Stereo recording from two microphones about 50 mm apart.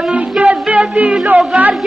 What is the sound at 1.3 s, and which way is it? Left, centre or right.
Speech, right.